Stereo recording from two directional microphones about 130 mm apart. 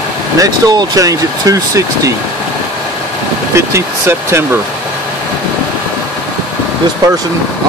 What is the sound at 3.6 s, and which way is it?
Speech, 20° right (ahead or behind).